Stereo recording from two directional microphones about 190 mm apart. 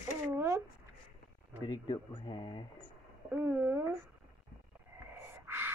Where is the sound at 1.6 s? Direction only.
25° left (ahead or behind).